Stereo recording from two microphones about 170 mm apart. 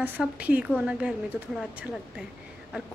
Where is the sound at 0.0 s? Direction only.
10° right (ahead or behind).